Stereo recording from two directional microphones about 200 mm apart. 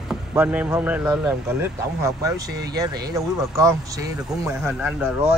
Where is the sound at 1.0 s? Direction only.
15° right (ahead or behind).